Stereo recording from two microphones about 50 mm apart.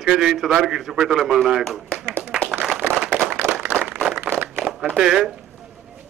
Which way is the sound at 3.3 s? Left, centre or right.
Right.